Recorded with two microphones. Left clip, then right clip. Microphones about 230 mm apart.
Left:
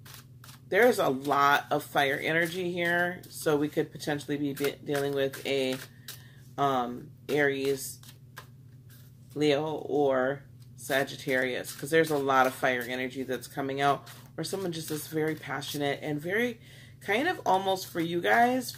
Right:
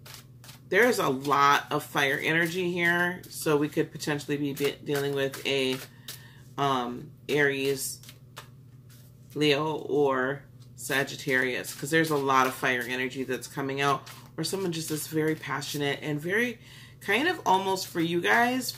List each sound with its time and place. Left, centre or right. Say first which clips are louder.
0.7 s speech: even; centre
9.4 s speech: right 2 dB; centre